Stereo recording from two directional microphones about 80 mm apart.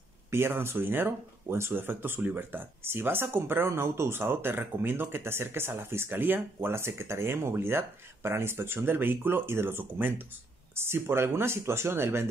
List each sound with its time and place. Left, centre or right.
0.3 s speech: right